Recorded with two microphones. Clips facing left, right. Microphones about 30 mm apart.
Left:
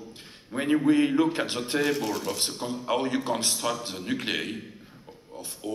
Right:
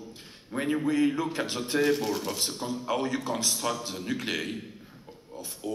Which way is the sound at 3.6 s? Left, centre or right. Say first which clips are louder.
Left 1 dB; centre.